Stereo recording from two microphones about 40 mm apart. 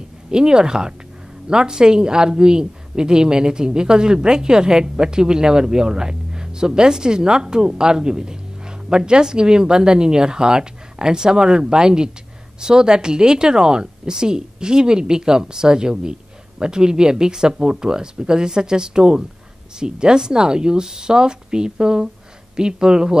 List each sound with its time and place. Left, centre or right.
0.3 s a woman's voice: centre